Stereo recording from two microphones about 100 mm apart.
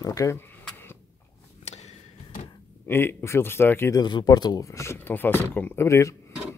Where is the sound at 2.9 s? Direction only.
25° left (ahead or behind).